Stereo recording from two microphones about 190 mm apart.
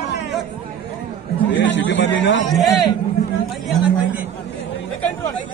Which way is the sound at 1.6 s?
70° left (ahead or behind).